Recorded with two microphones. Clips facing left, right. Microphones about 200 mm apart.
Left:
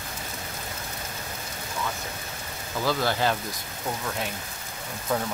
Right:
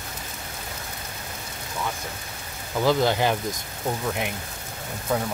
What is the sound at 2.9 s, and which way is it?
Speech, 20° right (ahead or behind).